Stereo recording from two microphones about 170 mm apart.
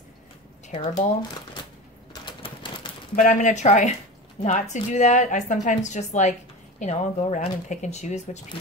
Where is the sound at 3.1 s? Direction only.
45° left (ahead or behind).